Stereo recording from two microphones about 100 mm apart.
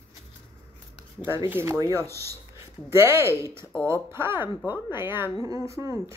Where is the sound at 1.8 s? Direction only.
35° right (ahead or behind).